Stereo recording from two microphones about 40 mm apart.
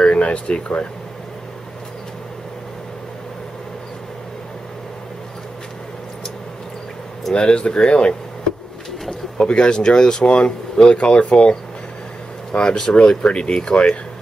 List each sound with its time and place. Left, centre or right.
0.0 s speech: left
7.3 s speech: left
9.5 s speech: left
12.5 s speech: centre